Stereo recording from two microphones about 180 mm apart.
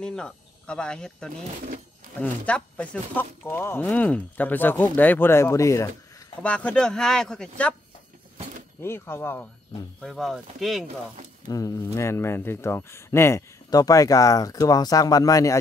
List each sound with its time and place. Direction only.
0.0 s speech: 5° left (ahead or behind)
8.8 s speech: 15° left (ahead or behind)
9.9 s speech: centre (ahead or behind)
11.4 s speech: 20° left (ahead or behind)